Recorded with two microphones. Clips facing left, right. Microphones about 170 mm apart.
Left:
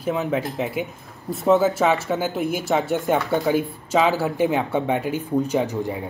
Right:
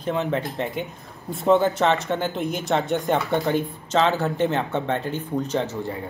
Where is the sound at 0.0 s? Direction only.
5° left (ahead or behind).